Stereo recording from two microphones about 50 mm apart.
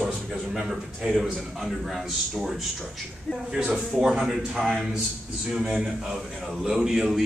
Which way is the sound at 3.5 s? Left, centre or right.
Centre.